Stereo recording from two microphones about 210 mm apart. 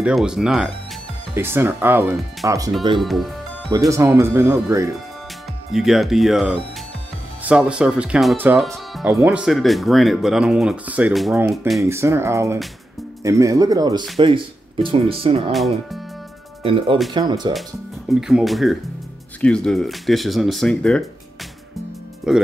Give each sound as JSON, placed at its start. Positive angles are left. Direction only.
{"t": 0.0, "sound": "speech", "side_deg": -5}
{"t": 3.0, "sound": "music", "side_deg": 0}
{"t": 3.7, "sound": "speech", "side_deg": -15}
{"t": 5.7, "sound": "speech", "side_deg": 0}
{"t": 11.8, "sound": "speech", "side_deg": -10}
{"t": 15.5, "sound": "speech", "side_deg": 0}
{"t": 16.6, "sound": "speech", "side_deg": -25}
{"t": 18.2, "sound": "speech", "side_deg": 0}
{"t": 22.3, "sound": "speech", "side_deg": -5}